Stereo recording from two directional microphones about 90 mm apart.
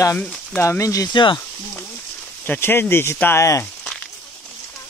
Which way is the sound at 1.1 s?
65° left (ahead or behind).